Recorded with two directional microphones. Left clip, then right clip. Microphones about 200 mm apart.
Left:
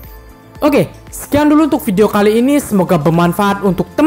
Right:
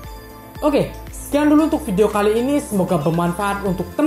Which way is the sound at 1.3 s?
40° left (ahead or behind).